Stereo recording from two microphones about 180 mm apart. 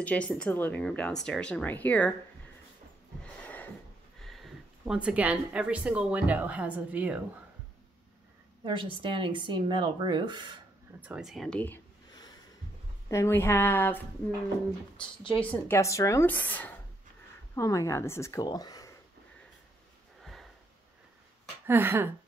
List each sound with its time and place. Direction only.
0.0 s speech: 5° left (ahead or behind)
3.4 s a sound: 10° left (ahead or behind)
4.2 s speech: centre (ahead or behind)
8.6 s speech: 30° right (ahead or behind)
11.0 s speech: 5° right (ahead or behind)
13.1 s speech: 15° left (ahead or behind)
15.3 s speech: 10° left (ahead or behind)
20.2 s sniff: centre (ahead or behind)
21.6 s speech: 10° right (ahead or behind)